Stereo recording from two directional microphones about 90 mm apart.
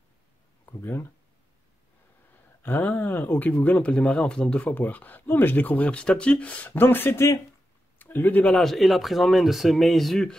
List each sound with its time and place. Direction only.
0.7 s speech: 25° left (ahead or behind)
2.6 s speech: 20° left (ahead or behind)
8.5 s speech: centre (ahead or behind)